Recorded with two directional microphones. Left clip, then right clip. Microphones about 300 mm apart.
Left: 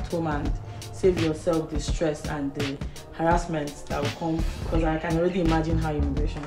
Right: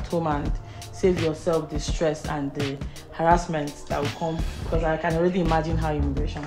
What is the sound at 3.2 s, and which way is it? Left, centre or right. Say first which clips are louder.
Speech: right 4 dB; right.